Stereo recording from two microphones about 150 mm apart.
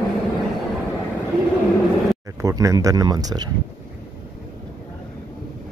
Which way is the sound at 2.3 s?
20° right (ahead or behind).